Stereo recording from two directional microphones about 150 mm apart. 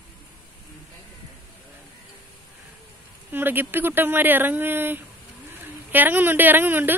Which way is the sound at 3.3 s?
15° right (ahead or behind).